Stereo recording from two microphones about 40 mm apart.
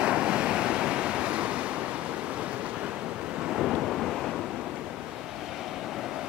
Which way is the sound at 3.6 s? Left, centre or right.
Centre.